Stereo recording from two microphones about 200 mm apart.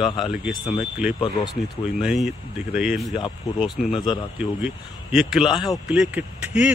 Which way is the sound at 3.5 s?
15° left (ahead or behind).